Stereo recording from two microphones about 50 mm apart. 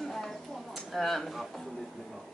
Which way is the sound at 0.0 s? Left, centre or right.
Centre.